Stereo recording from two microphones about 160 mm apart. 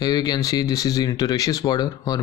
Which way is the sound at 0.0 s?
25° left (ahead or behind).